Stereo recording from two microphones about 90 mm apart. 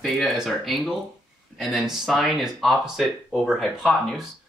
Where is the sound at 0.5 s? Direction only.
Centre (ahead or behind).